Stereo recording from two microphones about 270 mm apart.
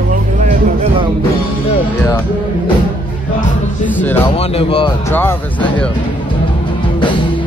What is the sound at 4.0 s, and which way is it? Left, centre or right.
Speech, centre.